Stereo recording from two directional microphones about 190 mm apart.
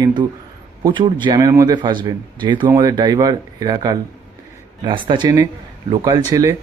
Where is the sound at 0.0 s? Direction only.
25° right (ahead or behind).